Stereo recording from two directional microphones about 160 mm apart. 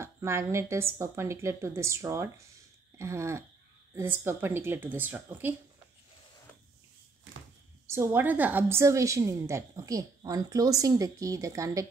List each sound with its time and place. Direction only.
0.0 s a woman's voice: 15° right (ahead or behind)
7.8 s a woman's voice: 15° right (ahead or behind)